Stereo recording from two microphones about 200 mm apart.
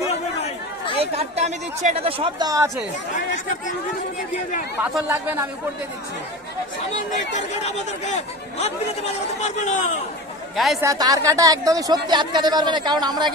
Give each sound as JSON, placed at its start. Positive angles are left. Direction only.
{"t": 0.9, "sound": "speech", "side_deg": -30}
{"t": 3.2, "sound": "speech", "side_deg": 40}
{"t": 5.0, "sound": "speech", "side_deg": -15}
{"t": 7.1, "sound": "speech", "side_deg": 35}
{"t": 10.5, "sound": "speech", "side_deg": 0}
{"t": 10.8, "sound": "speech", "side_deg": -15}